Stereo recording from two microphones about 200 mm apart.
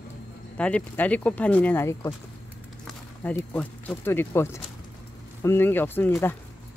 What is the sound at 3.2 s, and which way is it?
Speech, 10° left (ahead or behind).